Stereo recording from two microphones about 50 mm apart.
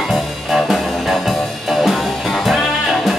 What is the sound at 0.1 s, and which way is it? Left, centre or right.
Music, centre.